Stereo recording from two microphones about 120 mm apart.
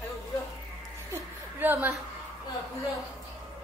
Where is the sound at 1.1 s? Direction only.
15° right (ahead or behind).